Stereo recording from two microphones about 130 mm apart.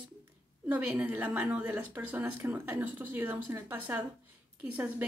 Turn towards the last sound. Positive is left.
turn(degrees=-15)  # may be behind; listen again after turning